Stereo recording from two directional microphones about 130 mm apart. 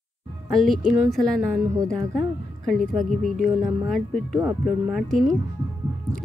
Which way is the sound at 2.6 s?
Centre (ahead or behind).